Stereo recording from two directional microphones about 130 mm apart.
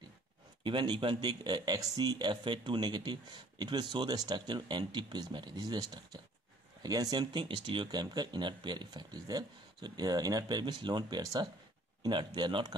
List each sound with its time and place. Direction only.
0.7 s speech: 40° right (ahead or behind)